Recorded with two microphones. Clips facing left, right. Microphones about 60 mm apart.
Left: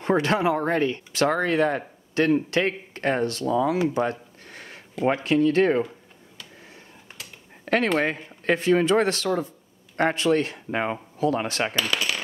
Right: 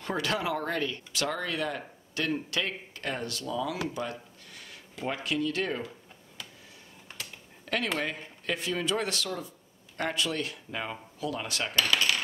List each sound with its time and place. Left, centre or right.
0.0 s speech: left
3.9 s a sound: left
5.0 s speech: left
7.6 s a sound: left
8.0 s speech: left
11.7 s coin: centre